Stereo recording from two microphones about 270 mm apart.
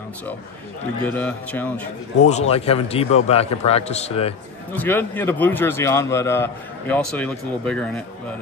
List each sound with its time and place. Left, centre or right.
1.1 s a man's voice: centre
2.1 s a man's voice: left
4.7 s a man's voice: centre